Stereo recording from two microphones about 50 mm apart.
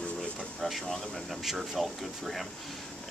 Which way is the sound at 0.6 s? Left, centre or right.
Centre.